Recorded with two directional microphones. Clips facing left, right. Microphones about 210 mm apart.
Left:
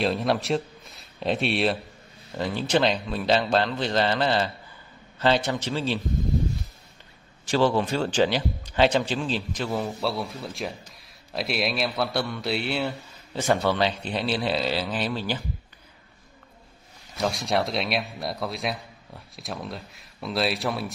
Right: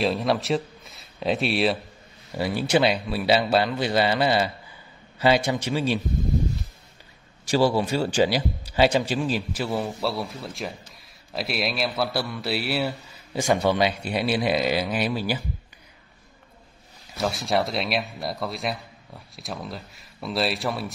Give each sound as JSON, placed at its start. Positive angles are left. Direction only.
{"t": 0.0, "sound": "a man's voice", "side_deg": 0}
{"t": 7.4, "sound": "a man's voice", "side_deg": -10}
{"t": 17.2, "sound": "speech", "side_deg": 0}